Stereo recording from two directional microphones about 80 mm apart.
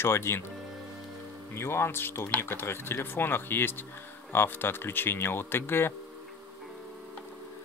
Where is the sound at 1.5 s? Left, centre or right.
Left.